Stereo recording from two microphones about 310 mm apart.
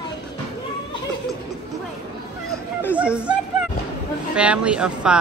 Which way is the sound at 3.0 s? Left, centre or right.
Centre.